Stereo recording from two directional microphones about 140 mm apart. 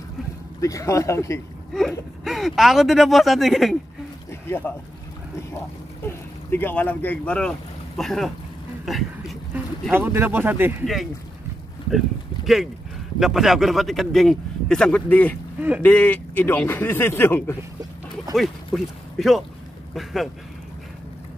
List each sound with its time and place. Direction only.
0.6 s speech: 25° left (ahead or behind)
1.7 s a man's voice: centre (ahead or behind)
4.3 s a sound: 15° left (ahead or behind)
6.5 s a man's voice: 15° left (ahead or behind)
8.8 s a sound: centre (ahead or behind)
9.9 s speech: 15° right (ahead or behind)
13.2 s a man's voice: centre (ahead or behind); by 17.6 s 15° left (ahead or behind)
18.3 s a man's voice: centre (ahead or behind)